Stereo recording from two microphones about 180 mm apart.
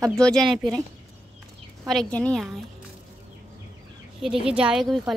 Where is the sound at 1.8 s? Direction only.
5° left (ahead or behind).